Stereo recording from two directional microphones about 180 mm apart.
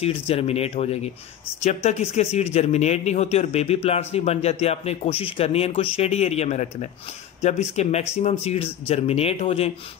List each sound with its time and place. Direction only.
0.0 s speech: 35° left (ahead or behind)